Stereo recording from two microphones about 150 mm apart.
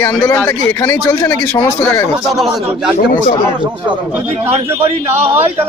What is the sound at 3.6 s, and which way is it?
Speech, 35° right (ahead or behind).